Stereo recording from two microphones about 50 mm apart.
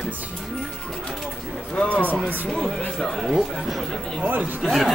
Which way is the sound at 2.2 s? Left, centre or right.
Centre.